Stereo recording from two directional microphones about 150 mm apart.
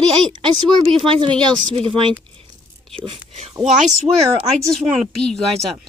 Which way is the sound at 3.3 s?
45° right (ahead or behind).